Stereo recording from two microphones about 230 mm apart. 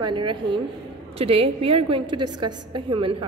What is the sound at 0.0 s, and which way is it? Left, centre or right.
A woman's voice, right.